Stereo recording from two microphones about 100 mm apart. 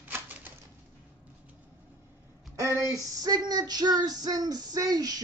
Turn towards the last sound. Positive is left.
turn(degrees=-40)  # may be behind; listen again after turning